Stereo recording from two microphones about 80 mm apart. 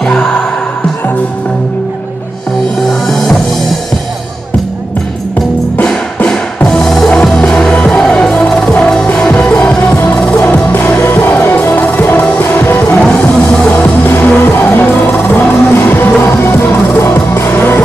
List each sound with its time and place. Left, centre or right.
0.0 s music: centre
2.9 s music: centre
6.2 s music: centre
10.7 s music: left